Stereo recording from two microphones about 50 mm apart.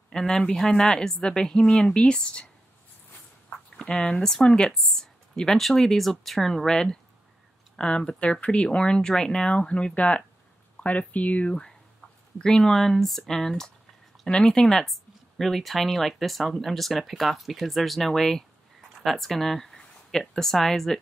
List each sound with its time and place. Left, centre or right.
0.1 s a woman's voice: centre
4.1 s a woman's voice: centre; by 11.5 s left
12.4 s a woman's voice: centre